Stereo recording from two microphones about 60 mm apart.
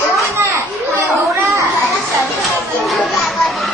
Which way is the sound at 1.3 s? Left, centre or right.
Right.